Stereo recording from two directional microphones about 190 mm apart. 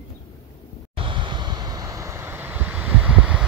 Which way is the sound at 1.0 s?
25° right (ahead or behind).